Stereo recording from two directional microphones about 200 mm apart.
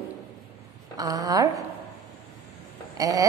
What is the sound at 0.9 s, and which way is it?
Speech, 20° right (ahead or behind).